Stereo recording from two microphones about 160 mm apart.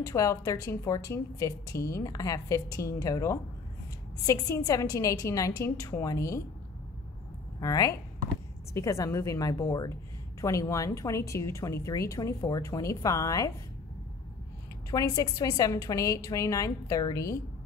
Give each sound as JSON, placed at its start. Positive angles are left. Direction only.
{"t": 0.0, "sound": "a woman's voice", "side_deg": 20}
{"t": 7.6, "sound": "a woman's voice", "side_deg": 20}
{"t": 14.9, "sound": "a woman's voice", "side_deg": 20}